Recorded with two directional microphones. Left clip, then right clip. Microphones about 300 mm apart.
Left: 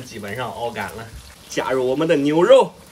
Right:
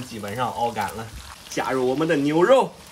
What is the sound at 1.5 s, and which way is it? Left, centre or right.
Speech, centre.